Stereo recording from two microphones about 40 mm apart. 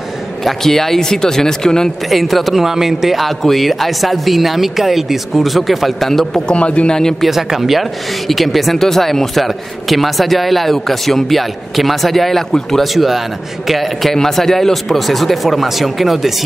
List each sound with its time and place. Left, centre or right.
0.5 s speech: centre
2.0 s speech: centre
6.4 s a man's voice: left
7.2 s speech: centre
12.9 s speech: centre